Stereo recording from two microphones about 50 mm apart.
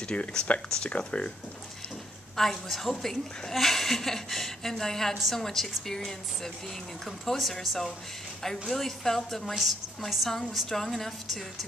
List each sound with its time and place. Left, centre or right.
0.1 s speech: centre
2.3 s a woman's voice: centre